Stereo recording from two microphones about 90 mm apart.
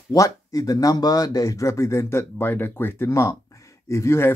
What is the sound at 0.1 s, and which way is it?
Speech, 40° left (ahead or behind).